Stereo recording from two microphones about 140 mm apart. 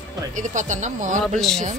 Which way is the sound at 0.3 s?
65° right (ahead or behind).